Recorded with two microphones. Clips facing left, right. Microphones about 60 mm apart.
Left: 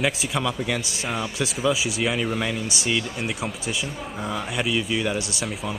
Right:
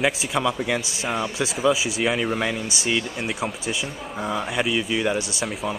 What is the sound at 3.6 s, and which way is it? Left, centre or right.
Speech, right.